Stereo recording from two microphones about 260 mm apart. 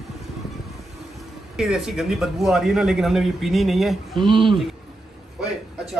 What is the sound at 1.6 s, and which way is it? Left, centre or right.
A man's voice, centre.